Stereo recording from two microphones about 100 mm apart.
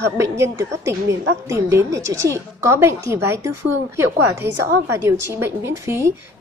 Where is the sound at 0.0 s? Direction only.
30° right (ahead or behind).